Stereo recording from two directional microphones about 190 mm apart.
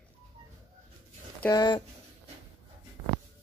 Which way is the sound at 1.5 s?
20° left (ahead or behind).